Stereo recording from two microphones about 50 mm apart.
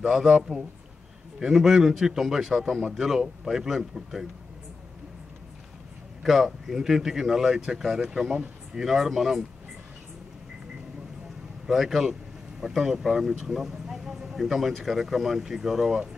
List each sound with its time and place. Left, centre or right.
0.0 s speech: centre
6.2 s speech: centre
11.6 s speech: centre